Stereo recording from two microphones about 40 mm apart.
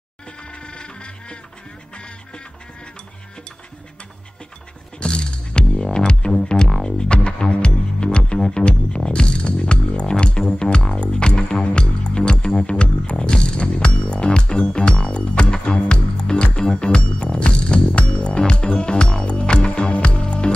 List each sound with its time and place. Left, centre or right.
0.5 s music: left
5.0 s music: left